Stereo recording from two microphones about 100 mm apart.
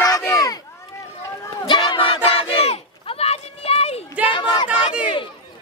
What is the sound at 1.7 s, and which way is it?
Crowd, 55° left (ahead or behind).